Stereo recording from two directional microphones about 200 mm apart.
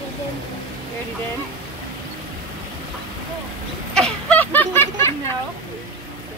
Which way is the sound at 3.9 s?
5° left (ahead or behind).